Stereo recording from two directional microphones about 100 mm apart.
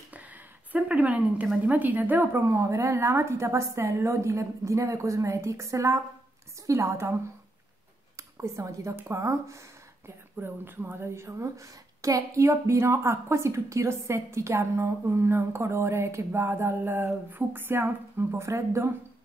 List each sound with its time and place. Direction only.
0.7 s a woman's voice: 15° right (ahead or behind); by 7.2 s 30° right (ahead or behind)
8.4 s a woman's voice: 30° right (ahead or behind)